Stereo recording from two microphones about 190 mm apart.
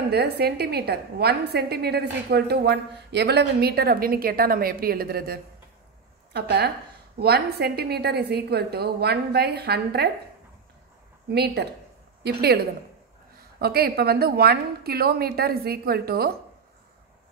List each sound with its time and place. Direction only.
0.1 s a woman's voice: 55° right (ahead or behind)
11.2 s a woman's voice: 60° right (ahead or behind)
13.6 s a woman's voice: 55° right (ahead or behind)